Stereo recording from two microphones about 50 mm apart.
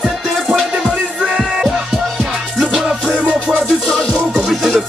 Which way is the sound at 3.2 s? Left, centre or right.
Right.